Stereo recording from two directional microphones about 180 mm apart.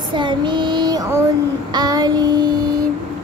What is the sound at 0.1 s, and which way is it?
Child singing, 25° right (ahead or behind).